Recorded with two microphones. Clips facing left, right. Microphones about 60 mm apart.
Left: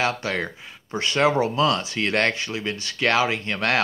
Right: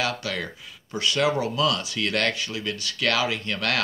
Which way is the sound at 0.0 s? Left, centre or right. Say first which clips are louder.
Left 3 dB; left.